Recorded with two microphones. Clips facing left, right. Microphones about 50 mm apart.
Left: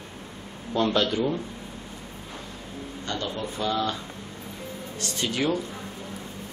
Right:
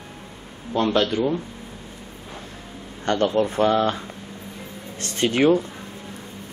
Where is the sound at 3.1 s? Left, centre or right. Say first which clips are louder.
Right 12 dB; right.